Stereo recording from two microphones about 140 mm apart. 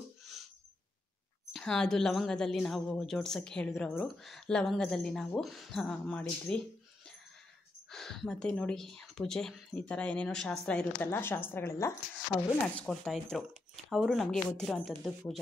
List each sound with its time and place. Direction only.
0.2 s music: centre (ahead or behind)
1.5 s a woman's voice: 5° left (ahead or behind)
7.9 s a woman's voice: 5° left (ahead or behind); by 12.0 s 20° left (ahead or behind)
12.8 s a woman's voice: centre (ahead or behind)